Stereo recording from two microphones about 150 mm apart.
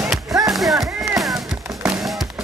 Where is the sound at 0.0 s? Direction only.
5° right (ahead or behind).